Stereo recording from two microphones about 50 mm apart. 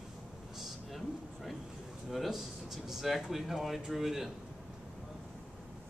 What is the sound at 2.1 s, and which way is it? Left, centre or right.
Speech, centre.